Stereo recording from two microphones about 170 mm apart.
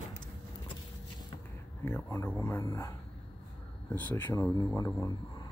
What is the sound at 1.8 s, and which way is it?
Speech, 15° left (ahead or behind).